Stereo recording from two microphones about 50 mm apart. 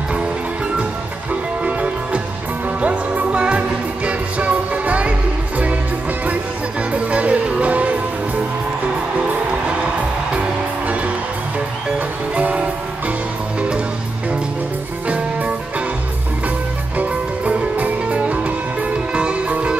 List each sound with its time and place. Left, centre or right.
1.6 s music: right
6.9 s music: right
12.4 s music: right
15.0 s music: right
17.0 s music: right